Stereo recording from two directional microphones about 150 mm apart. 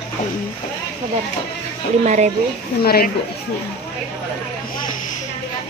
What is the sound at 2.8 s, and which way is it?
Speech, 90° left.